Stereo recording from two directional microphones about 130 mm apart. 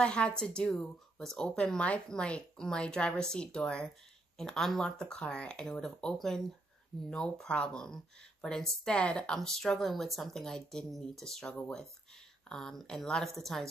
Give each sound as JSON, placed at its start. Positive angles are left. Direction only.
{"t": 0.0, "sound": "speech", "side_deg": 5}